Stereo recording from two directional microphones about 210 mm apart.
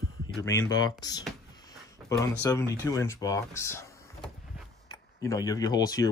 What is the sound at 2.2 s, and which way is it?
Speech, 15° left (ahead or behind).